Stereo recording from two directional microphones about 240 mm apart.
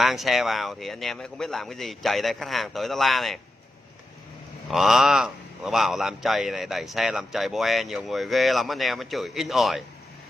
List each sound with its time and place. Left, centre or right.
0.0 s a man's voice: centre
4.6 s a man's voice: centre